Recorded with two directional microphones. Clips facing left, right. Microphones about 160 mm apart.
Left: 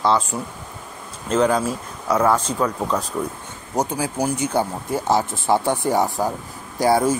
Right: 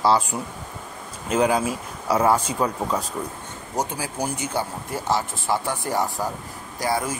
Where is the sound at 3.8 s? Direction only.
15° left (ahead or behind).